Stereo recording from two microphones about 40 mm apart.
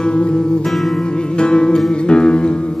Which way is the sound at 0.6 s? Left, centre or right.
Centre.